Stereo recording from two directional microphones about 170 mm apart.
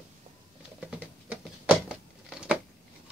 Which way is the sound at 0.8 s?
10° right (ahead or behind).